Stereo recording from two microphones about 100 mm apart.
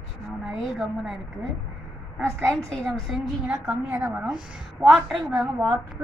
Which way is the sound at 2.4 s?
10° left (ahead or behind).